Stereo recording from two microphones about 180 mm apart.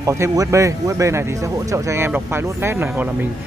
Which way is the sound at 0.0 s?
15° right (ahead or behind).